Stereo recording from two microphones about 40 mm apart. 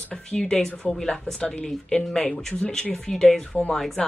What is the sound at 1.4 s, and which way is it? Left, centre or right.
Speech, left.